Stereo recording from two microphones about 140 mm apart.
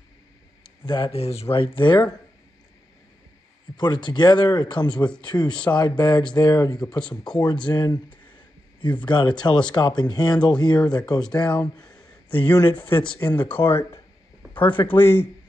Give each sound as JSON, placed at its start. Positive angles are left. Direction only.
{"t": 0.7, "sound": "speech", "side_deg": 35}
{"t": 3.7, "sound": "speech", "side_deg": 35}
{"t": 12.8, "sound": "speech", "side_deg": 10}